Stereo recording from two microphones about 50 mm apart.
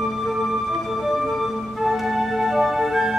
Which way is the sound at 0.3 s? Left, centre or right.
Centre.